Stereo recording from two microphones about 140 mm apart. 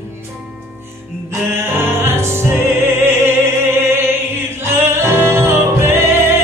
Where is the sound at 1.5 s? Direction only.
15° right (ahead or behind).